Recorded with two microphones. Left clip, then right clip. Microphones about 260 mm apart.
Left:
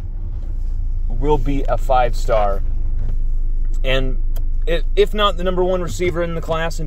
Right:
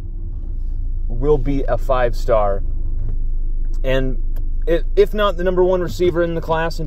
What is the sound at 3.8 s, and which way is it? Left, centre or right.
Speech, centre.